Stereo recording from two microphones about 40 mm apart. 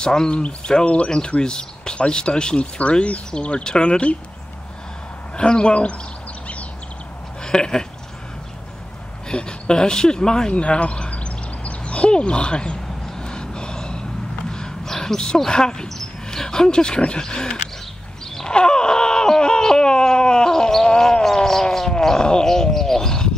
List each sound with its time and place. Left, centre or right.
0.0 s speech: centre
0.3 s speech: left
5.3 s speech: left
7.4 s a sound: centre
9.3 s speech: left
10.5 s a sound: left
16.3 s speech: centre
18.3 s groan: centre